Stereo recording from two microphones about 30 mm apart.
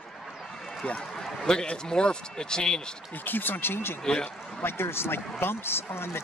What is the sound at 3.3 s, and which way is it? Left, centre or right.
Speech, left.